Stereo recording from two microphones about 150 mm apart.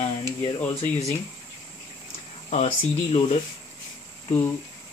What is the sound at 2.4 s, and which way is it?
Speech, 45° left (ahead or behind).